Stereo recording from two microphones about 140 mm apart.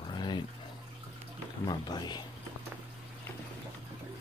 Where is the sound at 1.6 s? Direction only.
30° left (ahead or behind).